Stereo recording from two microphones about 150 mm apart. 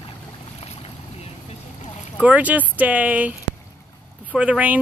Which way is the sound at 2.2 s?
10° right (ahead or behind).